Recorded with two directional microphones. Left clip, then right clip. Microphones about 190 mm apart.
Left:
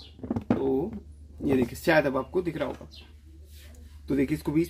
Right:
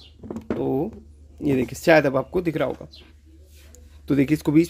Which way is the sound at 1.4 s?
45° right (ahead or behind).